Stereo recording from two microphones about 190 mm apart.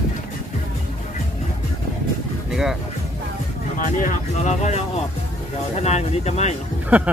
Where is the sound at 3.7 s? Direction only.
40° left (ahead or behind).